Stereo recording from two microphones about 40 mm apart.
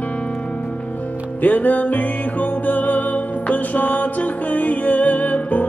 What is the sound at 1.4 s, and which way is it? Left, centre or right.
Music, left.